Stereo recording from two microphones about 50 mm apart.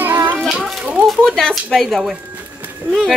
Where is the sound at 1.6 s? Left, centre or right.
Centre.